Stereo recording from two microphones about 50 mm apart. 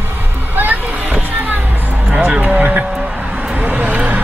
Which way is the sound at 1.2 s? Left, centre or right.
Right.